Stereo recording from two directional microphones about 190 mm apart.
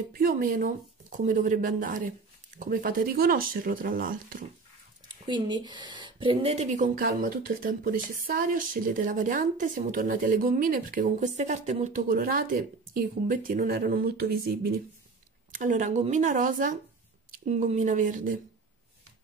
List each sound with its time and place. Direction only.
0.2 s speech: 50° right (ahead or behind)
5.0 s speech: 25° right (ahead or behind); by 14.8 s 55° right (ahead or behind)
15.5 s speech: 40° right (ahead or behind)